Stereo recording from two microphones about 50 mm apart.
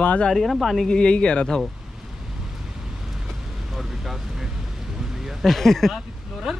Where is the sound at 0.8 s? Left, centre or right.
Centre.